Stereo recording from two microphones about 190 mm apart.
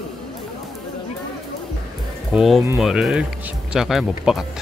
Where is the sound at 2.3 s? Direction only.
Centre (ahead or behind).